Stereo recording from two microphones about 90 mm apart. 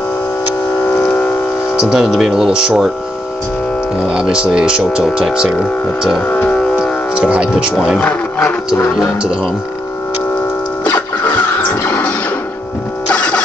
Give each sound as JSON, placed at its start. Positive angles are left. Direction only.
{"t": 0.8, "sound": "civil defense siren", "side_deg": 25}
{"t": 1.8, "sound": "speech", "side_deg": -5}
{"t": 4.1, "sound": "speech", "side_deg": -10}
{"t": 6.2, "sound": "music", "side_deg": 15}
{"t": 7.2, "sound": "speech", "side_deg": -10}
{"t": 8.0, "sound": "speech", "side_deg": 15}
{"t": 10.8, "sound": "music", "side_deg": 20}
{"t": 13.1, "sound": "music", "side_deg": 15}